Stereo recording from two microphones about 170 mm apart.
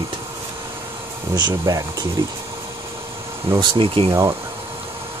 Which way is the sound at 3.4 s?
30° right (ahead or behind).